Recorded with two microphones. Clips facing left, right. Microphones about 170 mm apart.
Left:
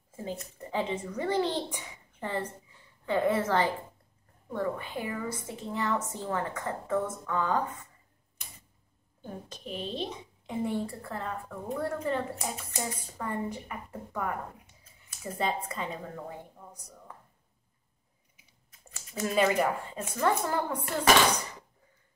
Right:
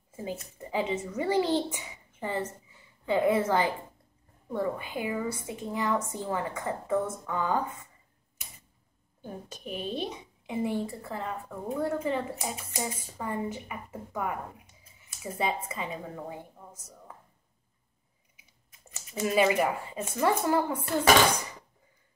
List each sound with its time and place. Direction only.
0.2 s a woman's voice: 5° right (ahead or behind)
9.5 s a woman's voice: 10° right (ahead or behind)
18.9 s a sound: 20° right (ahead or behind)
19.2 s a woman's voice: 5° right (ahead or behind)